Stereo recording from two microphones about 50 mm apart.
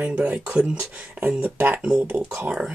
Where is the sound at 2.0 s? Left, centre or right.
Right.